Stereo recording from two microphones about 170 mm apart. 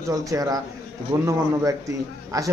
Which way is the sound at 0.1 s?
20° right (ahead or behind).